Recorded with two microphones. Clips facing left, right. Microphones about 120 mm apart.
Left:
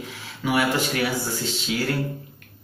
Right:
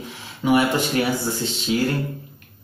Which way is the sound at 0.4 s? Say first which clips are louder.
Right 4 dB; 25° right (ahead or behind).